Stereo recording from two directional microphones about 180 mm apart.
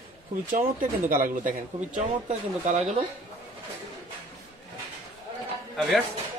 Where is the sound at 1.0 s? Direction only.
50° right (ahead or behind).